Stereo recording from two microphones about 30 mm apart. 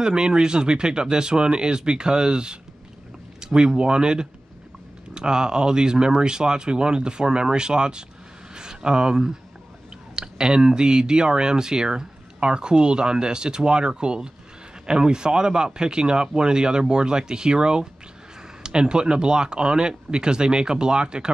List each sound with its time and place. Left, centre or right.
0.0 s speech: right
3.3 s a sound: right
3.7 s speech: right